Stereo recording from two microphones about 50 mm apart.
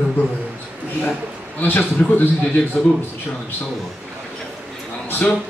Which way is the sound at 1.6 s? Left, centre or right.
Left.